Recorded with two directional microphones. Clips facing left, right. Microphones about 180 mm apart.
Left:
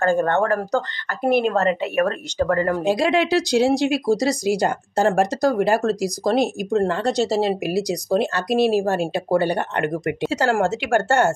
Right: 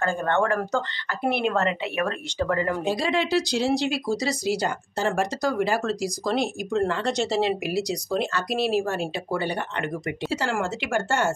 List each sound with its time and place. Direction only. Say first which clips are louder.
0.0 s speech: left 5 dB; 45° left (ahead or behind)
3.0 s speech: left 5 dB; 70° left (ahead or behind)
3.5 s speech: left 6 dB; 50° left (ahead or behind)